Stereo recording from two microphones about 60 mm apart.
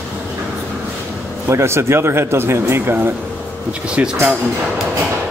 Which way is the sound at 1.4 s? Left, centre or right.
Right.